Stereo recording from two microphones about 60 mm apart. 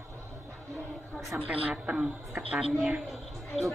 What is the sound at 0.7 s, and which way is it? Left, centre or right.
Music, right.